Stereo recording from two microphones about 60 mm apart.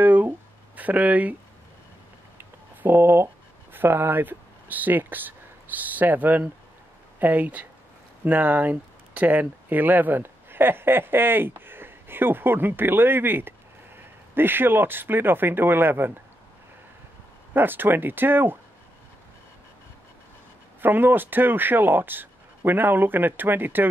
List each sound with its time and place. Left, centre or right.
0.0 s a sound: right
0.7 s speech: right
2.3 s a sound: right
3.7 s speech: right
17.6 s speech: right
20.8 s speech: right